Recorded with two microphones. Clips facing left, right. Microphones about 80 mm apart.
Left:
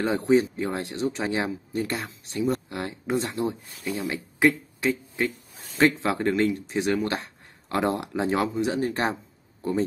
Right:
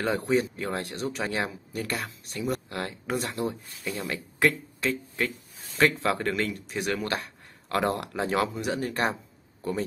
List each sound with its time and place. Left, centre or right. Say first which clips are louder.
0.0 s speech: left 4 dB; left